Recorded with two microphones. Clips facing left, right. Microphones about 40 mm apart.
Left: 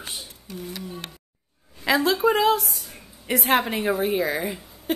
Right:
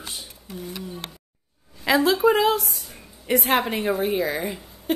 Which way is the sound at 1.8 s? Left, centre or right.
Centre.